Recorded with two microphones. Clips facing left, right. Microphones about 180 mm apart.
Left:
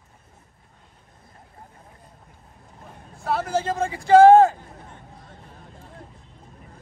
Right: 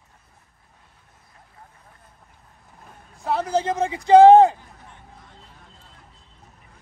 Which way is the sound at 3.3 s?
20° right (ahead or behind).